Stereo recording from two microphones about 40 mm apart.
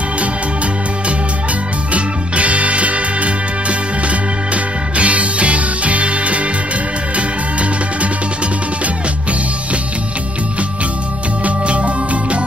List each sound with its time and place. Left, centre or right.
2.0 s music: right
4.9 s music: right
11.4 s music: right